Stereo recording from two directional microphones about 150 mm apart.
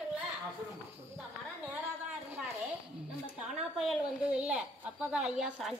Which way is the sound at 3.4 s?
Centre (ahead or behind).